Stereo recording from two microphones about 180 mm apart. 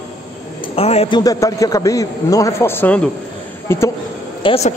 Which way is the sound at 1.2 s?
20° left (ahead or behind).